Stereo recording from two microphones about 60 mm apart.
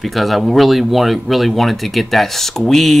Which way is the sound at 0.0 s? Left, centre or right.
Centre.